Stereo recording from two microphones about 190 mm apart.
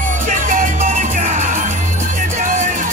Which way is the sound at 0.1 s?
40° right (ahead or behind).